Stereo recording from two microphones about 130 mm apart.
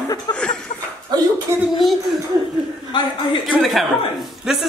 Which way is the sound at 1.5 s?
20° right (ahead or behind).